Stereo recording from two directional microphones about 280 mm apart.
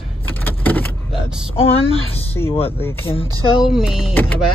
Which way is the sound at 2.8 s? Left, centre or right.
Centre.